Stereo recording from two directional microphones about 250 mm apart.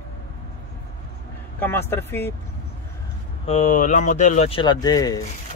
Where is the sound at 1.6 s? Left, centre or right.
Centre.